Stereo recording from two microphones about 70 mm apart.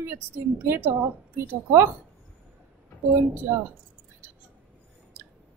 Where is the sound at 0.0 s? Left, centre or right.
Right.